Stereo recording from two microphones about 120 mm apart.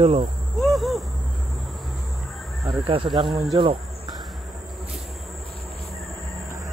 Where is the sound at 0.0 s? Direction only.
45° right (ahead or behind).